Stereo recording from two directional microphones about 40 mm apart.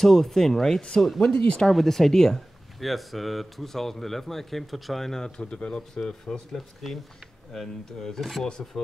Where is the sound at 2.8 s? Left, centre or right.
Centre.